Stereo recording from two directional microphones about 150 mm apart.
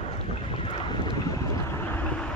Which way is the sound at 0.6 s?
35° left (ahead or behind).